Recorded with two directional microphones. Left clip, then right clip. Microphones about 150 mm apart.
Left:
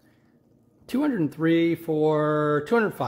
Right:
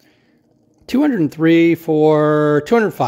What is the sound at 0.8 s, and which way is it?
Speech, 50° right (ahead or behind).